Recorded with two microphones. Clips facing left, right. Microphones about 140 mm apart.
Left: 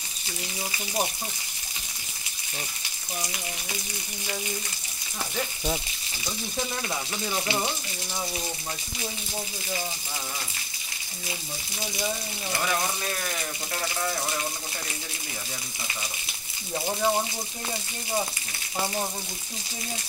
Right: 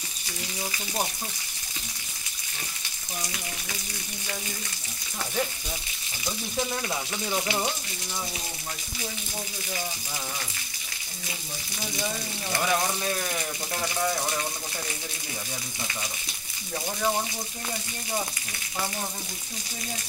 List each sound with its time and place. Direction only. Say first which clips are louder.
12.6 s speech: right 3 dB; 5° right (ahead or behind)
16.7 s speech: left 2 dB; 20° left (ahead or behind)